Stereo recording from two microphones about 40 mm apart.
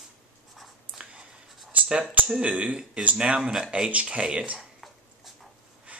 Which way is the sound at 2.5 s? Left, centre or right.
Right.